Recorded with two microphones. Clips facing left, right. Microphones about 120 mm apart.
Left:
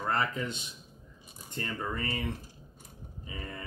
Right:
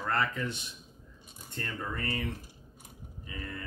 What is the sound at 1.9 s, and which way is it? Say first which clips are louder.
Speech: left 1 dB; 20° left (ahead or behind).